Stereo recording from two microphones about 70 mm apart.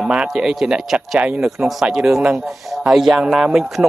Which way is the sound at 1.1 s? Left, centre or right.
Centre.